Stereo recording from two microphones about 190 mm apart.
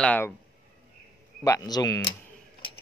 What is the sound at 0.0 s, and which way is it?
Speech, 10° left (ahead or behind).